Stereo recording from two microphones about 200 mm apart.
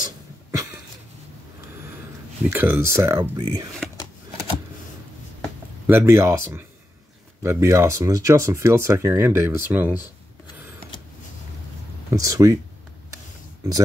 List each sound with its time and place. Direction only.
0.0 s a sound: 15° right (ahead or behind)
2.5 s speech: 10° right (ahead or behind)
5.9 s speech: 10° right (ahead or behind)
12.1 s speech: 15° right (ahead or behind)